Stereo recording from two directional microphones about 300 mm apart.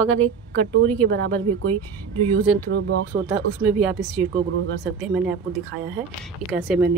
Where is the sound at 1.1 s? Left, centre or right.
Right.